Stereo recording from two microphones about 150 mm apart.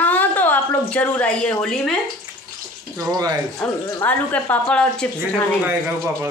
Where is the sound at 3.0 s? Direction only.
25° right (ahead or behind).